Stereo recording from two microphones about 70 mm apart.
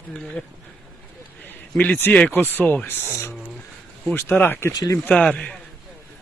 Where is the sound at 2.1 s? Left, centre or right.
Left.